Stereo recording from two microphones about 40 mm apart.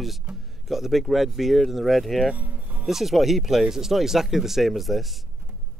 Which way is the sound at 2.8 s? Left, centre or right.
Centre.